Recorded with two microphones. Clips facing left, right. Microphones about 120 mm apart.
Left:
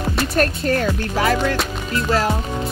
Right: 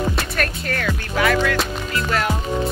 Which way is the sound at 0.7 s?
35° left (ahead or behind).